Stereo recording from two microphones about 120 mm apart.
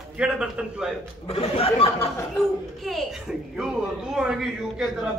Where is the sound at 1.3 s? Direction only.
55° left (ahead or behind).